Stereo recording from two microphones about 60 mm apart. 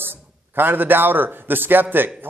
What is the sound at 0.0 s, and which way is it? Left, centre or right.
A man's voice, right.